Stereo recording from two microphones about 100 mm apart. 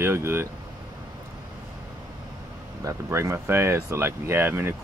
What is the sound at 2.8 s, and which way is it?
Speech, 30° right (ahead or behind).